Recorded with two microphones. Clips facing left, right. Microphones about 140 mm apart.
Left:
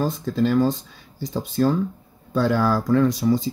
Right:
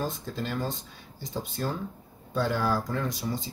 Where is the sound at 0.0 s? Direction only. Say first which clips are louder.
Left 11 dB; 90° left.